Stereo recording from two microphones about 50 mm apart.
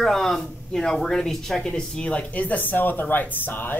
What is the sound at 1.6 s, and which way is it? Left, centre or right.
Speech, centre.